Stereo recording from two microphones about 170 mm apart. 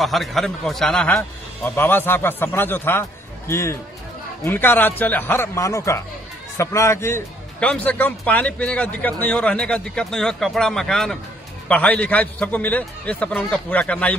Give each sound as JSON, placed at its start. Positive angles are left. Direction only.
{"t": 0.0, "sound": "a man's voice", "side_deg": 0}